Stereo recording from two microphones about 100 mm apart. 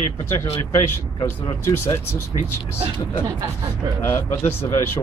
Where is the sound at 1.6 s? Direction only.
25° left (ahead or behind).